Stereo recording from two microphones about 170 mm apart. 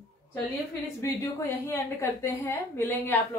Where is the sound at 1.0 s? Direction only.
15° left (ahead or behind).